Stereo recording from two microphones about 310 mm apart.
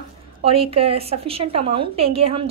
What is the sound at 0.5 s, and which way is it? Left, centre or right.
A woman's voice, centre.